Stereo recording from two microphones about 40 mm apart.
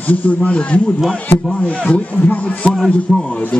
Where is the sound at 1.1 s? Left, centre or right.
Centre.